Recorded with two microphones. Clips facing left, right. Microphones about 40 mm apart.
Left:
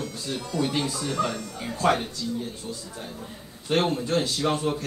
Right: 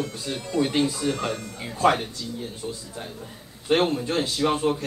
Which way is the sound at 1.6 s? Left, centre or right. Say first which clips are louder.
Right 2 dB; centre.